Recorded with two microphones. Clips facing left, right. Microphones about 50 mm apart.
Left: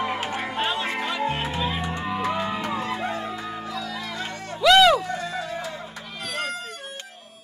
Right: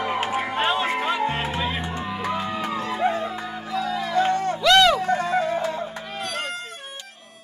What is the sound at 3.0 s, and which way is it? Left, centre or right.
Music, right.